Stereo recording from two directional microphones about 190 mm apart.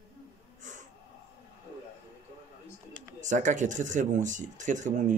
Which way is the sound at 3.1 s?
40° right (ahead or behind).